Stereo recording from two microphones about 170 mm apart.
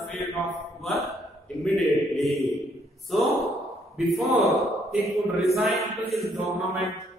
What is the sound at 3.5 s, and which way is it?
Sigh, centre (ahead or behind).